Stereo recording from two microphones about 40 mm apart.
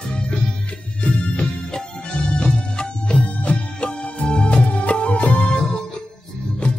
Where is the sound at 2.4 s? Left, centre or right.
Left.